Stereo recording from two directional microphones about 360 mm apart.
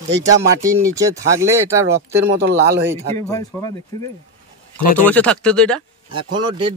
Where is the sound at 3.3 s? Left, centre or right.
Centre.